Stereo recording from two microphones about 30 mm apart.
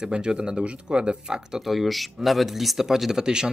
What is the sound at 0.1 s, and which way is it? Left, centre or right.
A man's voice, right.